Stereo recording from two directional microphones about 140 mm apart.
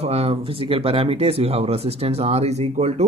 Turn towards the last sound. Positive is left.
turn(degrees=-50)  # may be behind; listen again after turning